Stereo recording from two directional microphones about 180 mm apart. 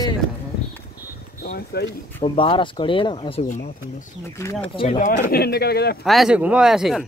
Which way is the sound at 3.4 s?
45° left (ahead or behind).